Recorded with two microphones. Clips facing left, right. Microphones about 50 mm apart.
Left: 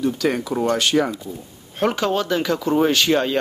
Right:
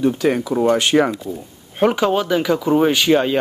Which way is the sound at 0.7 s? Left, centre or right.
Right.